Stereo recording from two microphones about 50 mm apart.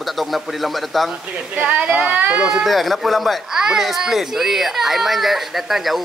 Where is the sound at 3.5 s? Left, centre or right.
Centre.